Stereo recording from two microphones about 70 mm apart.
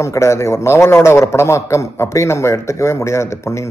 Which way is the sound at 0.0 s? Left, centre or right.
Left.